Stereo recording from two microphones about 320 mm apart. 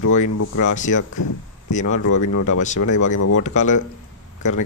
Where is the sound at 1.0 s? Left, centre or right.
Left.